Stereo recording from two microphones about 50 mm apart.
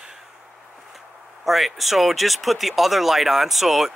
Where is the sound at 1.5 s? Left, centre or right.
Centre.